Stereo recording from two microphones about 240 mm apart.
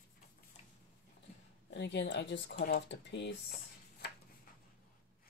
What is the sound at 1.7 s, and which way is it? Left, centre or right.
Speech, left.